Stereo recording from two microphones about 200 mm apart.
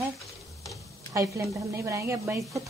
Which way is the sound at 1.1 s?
15° right (ahead or behind).